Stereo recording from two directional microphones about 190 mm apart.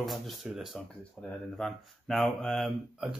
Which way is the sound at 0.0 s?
Centre (ahead or behind).